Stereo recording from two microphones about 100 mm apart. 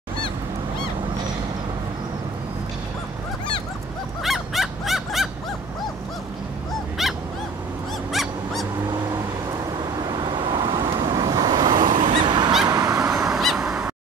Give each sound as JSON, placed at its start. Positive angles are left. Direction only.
{"t": 4.2, "sound": "fowl", "side_deg": 0}
{"t": 7.0, "sound": "dog", "side_deg": 0}
{"t": 8.1, "sound": "owl", "side_deg": 0}
{"t": 9.5, "sound": "vehicle", "side_deg": -45}
{"t": 12.1, "sound": "honk", "side_deg": -55}
{"t": 12.6, "sound": "fowl", "side_deg": -40}
{"t": 13.1, "sound": "a sound", "side_deg": -5}